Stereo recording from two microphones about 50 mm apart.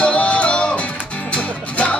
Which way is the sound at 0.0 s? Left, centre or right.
Left.